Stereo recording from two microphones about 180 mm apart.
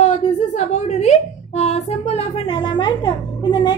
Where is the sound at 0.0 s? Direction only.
40° left (ahead or behind).